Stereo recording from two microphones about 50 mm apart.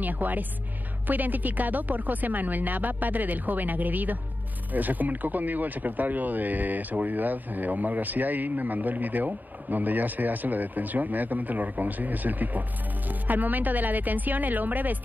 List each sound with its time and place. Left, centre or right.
0.0 s speech: right